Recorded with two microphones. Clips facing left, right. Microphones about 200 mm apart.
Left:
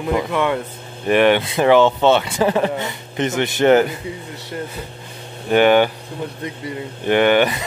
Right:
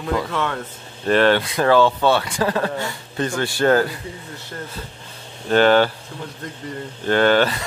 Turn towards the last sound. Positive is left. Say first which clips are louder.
# left 2 dB
turn(degrees=15)  # may be behind; listen again after turning